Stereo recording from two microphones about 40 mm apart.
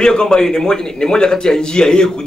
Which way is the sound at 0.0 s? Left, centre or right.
Centre.